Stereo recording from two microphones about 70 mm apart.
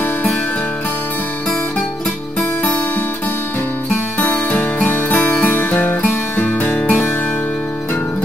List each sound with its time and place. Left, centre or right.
4.2 s music: left